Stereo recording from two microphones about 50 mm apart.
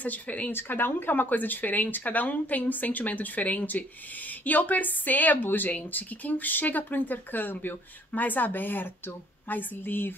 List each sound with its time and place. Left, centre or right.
0.0 s speech: left
0.6 s speech: left